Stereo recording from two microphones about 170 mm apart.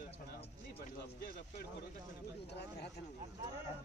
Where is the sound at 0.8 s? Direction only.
65° left (ahead or behind).